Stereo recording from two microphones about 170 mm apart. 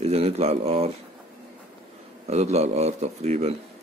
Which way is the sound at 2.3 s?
40° right (ahead or behind).